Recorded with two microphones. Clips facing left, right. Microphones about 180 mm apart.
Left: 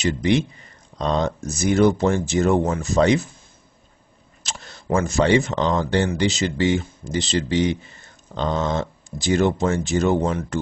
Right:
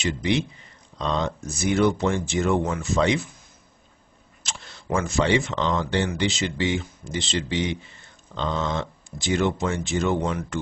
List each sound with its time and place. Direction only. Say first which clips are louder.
0.9 s speech: left 4 dB; 45° left (ahead or behind)
4.4 s a sound: left 3 dB; 40° left (ahead or behind)
4.8 s speech: left 4 dB; 40° left (ahead or behind)